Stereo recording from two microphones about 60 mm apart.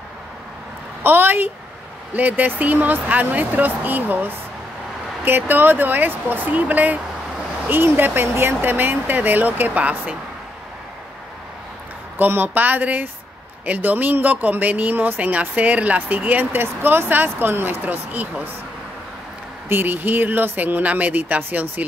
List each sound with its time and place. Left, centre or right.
1.0 s speech: right
12.2 s speech: right
16.6 s speech: right
19.7 s speech: right